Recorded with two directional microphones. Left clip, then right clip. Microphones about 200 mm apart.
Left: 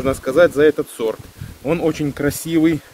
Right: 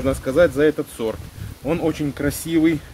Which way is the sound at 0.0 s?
30° left (ahead or behind).